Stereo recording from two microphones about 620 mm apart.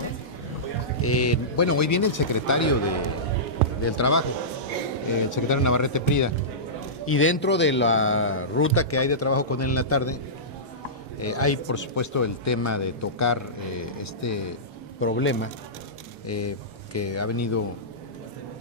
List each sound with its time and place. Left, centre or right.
1.0 s a man's voice: left
5.3 s a man's voice: left